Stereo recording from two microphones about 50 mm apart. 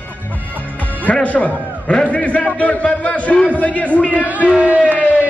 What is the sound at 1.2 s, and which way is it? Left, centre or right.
A man's voice, left.